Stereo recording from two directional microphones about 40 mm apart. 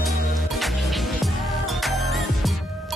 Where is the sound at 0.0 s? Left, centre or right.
Centre.